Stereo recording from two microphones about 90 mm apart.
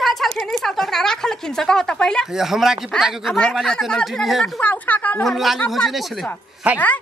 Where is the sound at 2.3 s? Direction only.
5° right (ahead or behind).